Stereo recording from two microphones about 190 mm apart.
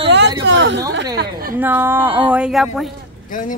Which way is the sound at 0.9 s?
60° right (ahead or behind).